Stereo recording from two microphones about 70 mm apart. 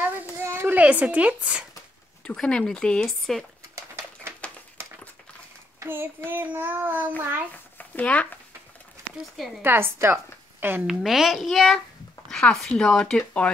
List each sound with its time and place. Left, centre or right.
0.0 s a sound: right
0.7 s a child's voice: right
2.2 s speech: centre
3.7 s bird: right
5.9 s a child's voice: right
7.7 s speech: left
9.6 s a woman's voice: right
10.9 s a child's voice: centre